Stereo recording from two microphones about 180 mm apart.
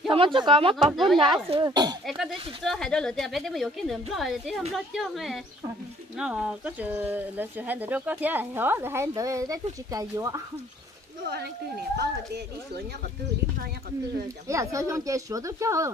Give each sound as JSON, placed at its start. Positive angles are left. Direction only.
{"t": 0.1, "sound": "speech", "side_deg": -30}
{"t": 0.7, "sound": "a woman's voice", "side_deg": 0}
{"t": 1.1, "sound": "speech", "side_deg": -25}
{"t": 2.0, "sound": "a woman's voice", "side_deg": 0}
{"t": 11.2, "sound": "speech", "side_deg": -60}
{"t": 14.5, "sound": "speech", "side_deg": -15}